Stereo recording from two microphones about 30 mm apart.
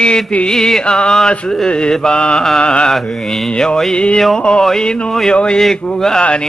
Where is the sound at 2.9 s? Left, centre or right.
Centre.